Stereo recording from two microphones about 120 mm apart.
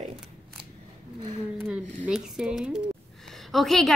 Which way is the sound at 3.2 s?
Centre (ahead or behind).